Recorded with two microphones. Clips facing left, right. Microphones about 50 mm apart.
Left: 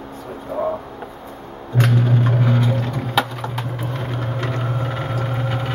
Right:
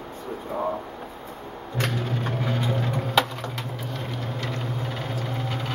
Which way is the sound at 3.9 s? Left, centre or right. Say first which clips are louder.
Left 6 dB; left.